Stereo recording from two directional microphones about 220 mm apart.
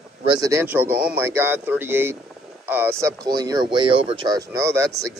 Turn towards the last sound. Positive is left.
turn(degrees=-15)  # may be behind; listen again after turning